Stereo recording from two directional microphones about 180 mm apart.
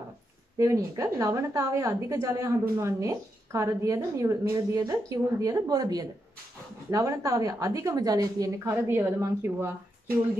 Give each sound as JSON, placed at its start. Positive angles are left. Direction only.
{"t": 0.6, "sound": "a woman's voice", "side_deg": -15}